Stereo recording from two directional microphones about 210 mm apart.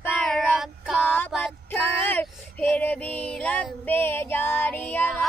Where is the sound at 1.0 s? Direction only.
10° left (ahead or behind).